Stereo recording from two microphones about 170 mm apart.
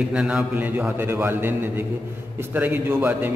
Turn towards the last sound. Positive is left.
turn(degrees=-10)  # may be behind; listen again after turning